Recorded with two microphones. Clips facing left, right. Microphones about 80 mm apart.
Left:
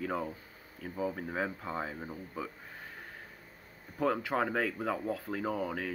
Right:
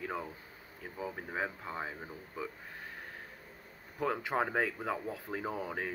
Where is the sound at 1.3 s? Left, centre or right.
Centre.